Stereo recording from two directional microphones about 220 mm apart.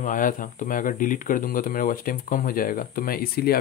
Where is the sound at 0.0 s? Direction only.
35° left (ahead or behind).